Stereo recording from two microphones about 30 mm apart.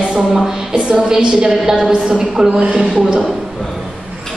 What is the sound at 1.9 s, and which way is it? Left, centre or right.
Speech, right.